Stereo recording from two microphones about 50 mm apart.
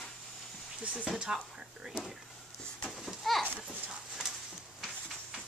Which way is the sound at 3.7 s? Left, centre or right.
Centre.